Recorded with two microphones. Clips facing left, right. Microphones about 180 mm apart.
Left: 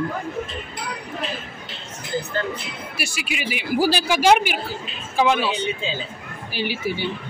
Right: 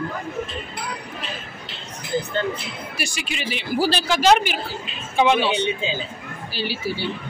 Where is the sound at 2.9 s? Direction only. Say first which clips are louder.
Left 1 dB; 5° left (ahead or behind).